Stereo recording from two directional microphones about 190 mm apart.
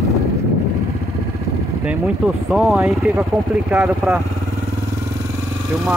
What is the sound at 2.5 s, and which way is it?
Speech, centre (ahead or behind).